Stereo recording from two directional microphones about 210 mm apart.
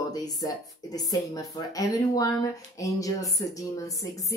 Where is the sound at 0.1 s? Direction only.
20° left (ahead or behind).